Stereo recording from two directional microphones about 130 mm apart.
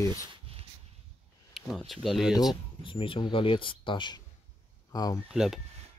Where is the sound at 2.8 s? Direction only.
40° left (ahead or behind).